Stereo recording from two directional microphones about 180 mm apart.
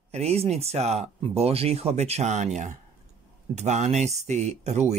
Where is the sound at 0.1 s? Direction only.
35° right (ahead or behind).